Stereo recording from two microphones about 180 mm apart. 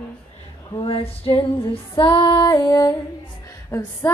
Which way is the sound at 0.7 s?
30° left (ahead or behind).